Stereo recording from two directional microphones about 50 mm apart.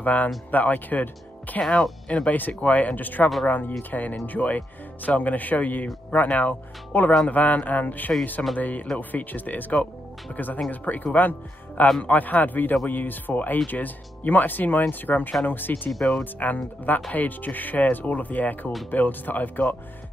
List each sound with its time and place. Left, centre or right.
0.0 s speech: left
1.6 s speech: centre
2.2 s speech: left